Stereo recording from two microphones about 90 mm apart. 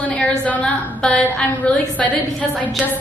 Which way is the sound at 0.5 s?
15° left (ahead or behind).